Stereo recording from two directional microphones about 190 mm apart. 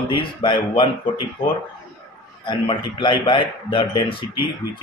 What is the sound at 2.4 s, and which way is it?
Speech, 25° left (ahead or behind).